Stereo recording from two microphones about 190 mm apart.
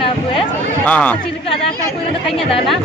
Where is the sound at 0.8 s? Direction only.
5° left (ahead or behind).